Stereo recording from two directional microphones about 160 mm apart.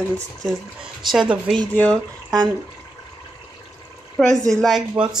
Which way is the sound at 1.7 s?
10° left (ahead or behind).